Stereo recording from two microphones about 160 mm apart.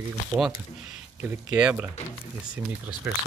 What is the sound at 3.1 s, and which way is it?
Speech, 10° right (ahead or behind).